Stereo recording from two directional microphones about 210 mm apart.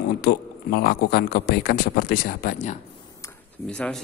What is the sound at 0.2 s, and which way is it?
A man's voice, 50° left (ahead or behind).